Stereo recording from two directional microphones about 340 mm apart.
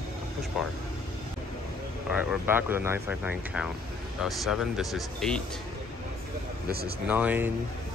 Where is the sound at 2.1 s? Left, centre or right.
Centre.